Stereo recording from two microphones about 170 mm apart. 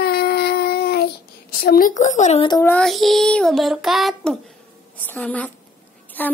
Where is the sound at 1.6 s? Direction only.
60° left (ahead or behind).